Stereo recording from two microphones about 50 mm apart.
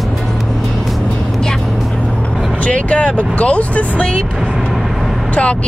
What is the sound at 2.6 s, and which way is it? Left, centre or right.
Speech, left.